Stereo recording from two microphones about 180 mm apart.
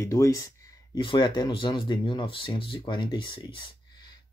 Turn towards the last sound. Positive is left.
turn(degrees=30)  # may be behind; listen again after turning